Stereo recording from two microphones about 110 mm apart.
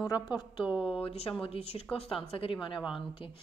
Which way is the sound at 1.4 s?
65° left (ahead or behind).